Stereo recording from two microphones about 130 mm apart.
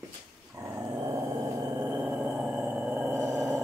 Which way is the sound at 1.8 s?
10° right (ahead or behind).